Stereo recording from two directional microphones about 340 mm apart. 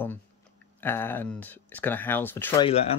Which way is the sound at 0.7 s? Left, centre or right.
Centre.